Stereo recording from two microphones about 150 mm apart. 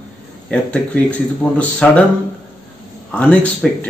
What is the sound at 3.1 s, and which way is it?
Speech, 10° left (ahead or behind).